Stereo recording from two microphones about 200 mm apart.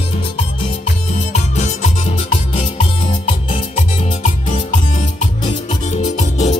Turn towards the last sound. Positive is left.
turn(degrees=35)  # may be behind; listen again after turning